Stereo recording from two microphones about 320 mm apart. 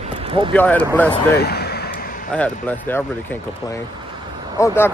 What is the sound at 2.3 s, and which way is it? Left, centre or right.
Speech, centre.